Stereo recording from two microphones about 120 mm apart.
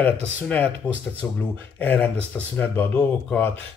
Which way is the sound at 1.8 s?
15° left (ahead or behind).